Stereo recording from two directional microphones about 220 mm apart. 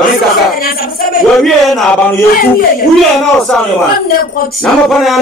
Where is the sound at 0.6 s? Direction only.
40° left (ahead or behind).